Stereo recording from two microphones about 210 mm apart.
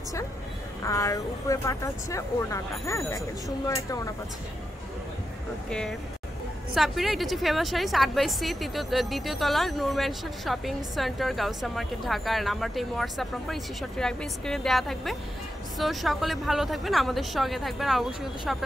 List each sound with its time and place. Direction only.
0.8 s speech: 15° left (ahead or behind)
5.7 s a woman's voice: 5° left (ahead or behind)